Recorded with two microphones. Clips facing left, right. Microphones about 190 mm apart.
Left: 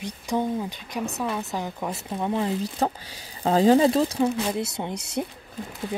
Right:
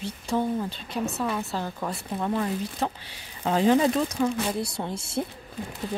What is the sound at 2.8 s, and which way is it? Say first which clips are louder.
Speech: left 4 dB; 40° left (ahead or behind).